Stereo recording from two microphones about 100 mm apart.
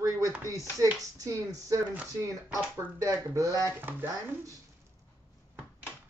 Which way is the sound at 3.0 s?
35° right (ahead or behind).